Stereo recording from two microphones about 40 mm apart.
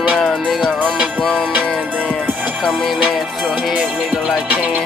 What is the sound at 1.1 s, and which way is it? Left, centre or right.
Music, centre.